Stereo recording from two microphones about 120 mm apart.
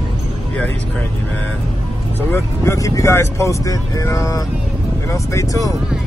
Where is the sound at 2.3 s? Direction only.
25° left (ahead or behind).